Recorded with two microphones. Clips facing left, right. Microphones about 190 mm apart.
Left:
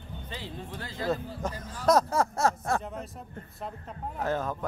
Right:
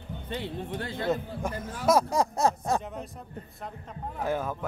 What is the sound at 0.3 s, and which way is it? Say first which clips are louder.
Speech: right 7 dB; 60° right (ahead or behind).